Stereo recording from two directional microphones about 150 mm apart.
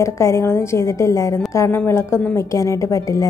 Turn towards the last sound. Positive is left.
turn(degrees=20)  # may be behind; listen again after turning